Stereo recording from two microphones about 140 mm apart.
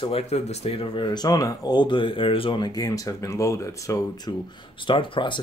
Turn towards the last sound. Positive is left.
turn(degrees=35)  # may be behind; listen again after turning